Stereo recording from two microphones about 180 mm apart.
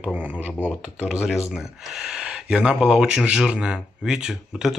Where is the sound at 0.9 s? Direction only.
5° right (ahead or behind).